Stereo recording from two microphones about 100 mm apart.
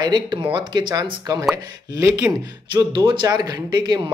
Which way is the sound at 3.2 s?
40° right (ahead or behind).